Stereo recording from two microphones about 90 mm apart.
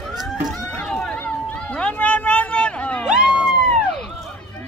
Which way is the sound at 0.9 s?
15° left (ahead or behind).